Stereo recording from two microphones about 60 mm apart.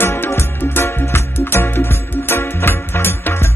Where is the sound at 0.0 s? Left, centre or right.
Left.